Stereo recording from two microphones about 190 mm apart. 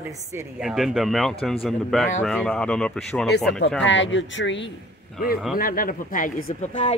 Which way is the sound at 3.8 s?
75° left (ahead or behind).